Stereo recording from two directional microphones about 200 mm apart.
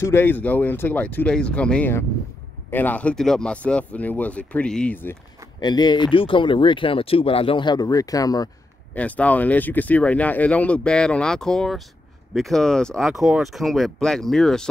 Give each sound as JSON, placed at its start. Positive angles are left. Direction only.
{"t": 0.0, "sound": "speech", "side_deg": 10}
{"t": 5.6, "sound": "speech", "side_deg": 20}
{"t": 8.9, "sound": "speech", "side_deg": 5}